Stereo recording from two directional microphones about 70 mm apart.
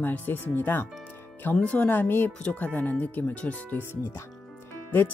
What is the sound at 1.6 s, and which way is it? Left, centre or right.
Speech, centre.